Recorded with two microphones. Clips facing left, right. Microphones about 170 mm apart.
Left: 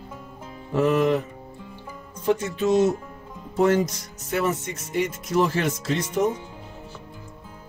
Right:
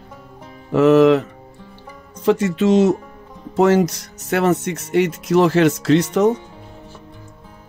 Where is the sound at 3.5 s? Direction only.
75° right (ahead or behind).